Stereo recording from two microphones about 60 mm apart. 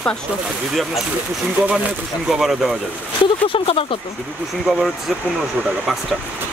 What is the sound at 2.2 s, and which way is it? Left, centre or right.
Speech, centre.